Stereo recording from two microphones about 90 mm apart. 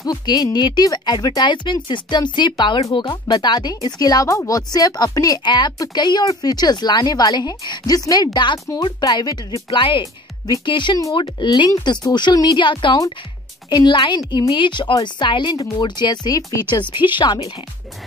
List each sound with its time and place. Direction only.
0.0 s a woman's voice: 45° left (ahead or behind)
9.7 s speech: 65° left (ahead or behind); by 16.5 s 40° left (ahead or behind)